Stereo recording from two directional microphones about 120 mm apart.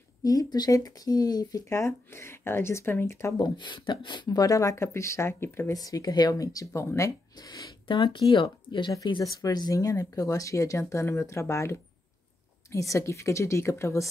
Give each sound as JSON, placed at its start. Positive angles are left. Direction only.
{"t": 0.2, "sound": "speech", "side_deg": 30}
{"t": 3.3, "sound": "speech", "side_deg": 40}
{"t": 7.3, "sound": "speech", "side_deg": 35}
{"t": 8.9, "sound": "speech", "side_deg": 35}